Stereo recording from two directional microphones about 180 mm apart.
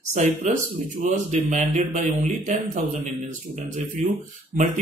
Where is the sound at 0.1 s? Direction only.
40° right (ahead or behind).